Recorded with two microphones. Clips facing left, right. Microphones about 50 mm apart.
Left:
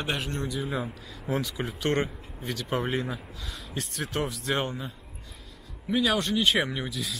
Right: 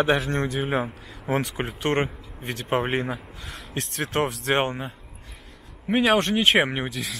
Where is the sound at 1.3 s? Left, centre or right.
Right.